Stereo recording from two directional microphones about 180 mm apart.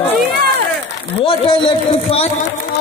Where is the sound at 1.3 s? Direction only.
30° left (ahead or behind).